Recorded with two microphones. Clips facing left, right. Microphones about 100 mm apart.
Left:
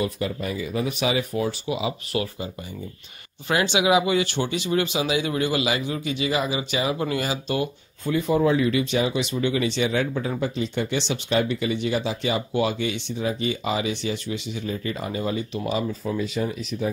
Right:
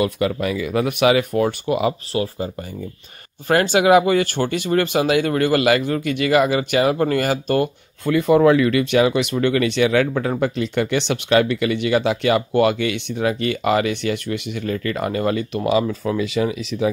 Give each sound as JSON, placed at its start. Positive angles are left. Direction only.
{"t": 0.0, "sound": "speech", "side_deg": -80}
{"t": 2.1, "sound": "speech", "side_deg": -35}
{"t": 3.4, "sound": "speech", "side_deg": -50}